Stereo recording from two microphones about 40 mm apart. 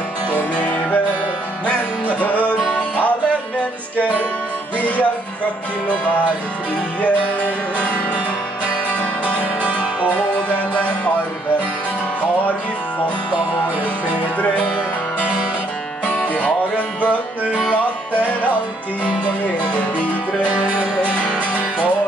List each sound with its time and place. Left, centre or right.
0.3 s music: left
2.0 s music: left
4.7 s music: left
7.0 s music: left
19.0 s music: left